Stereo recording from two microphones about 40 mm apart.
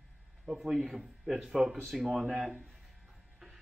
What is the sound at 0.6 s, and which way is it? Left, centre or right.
A man's voice, centre.